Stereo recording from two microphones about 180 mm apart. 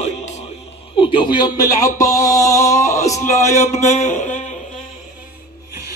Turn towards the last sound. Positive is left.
turn(degrees=40)  # may be behind; listen again after turning